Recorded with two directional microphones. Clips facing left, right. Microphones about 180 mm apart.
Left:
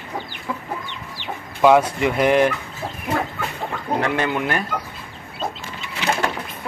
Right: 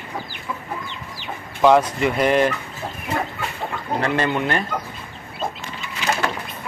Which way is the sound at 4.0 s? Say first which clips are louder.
Right 1 dB; 10° left (ahead or behind).